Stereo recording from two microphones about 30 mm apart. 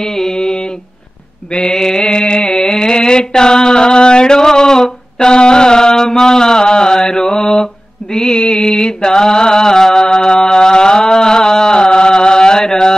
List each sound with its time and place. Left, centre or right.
0.0 s mantra: centre
1.7 s mantra: centre
2.4 s mantra: centre